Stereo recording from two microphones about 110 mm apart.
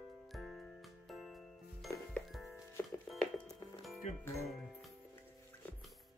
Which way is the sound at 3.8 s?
Centre (ahead or behind).